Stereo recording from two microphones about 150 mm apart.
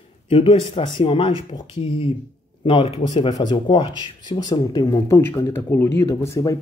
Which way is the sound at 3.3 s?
30° left (ahead or behind).